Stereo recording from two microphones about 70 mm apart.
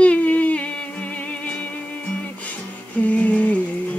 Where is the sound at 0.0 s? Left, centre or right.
Centre.